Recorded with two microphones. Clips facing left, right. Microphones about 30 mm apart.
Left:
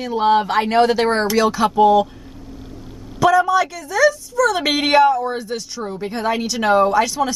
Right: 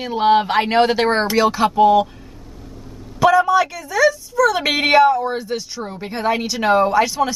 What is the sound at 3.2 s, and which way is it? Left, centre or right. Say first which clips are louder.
A woman's voice: right 1 dB; centre.